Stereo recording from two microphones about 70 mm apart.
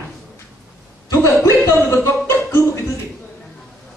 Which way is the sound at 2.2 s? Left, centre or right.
Left.